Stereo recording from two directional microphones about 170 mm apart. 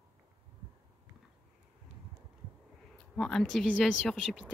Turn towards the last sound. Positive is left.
turn(degrees=0)  # may be behind; listen again after turning